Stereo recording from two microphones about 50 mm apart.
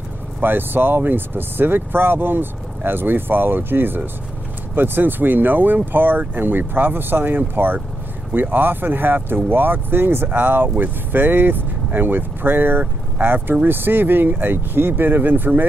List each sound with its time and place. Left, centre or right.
0.4 s speech: right